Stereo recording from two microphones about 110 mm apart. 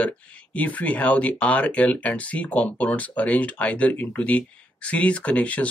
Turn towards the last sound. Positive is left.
turn(degrees=10)  # may be behind; listen again after turning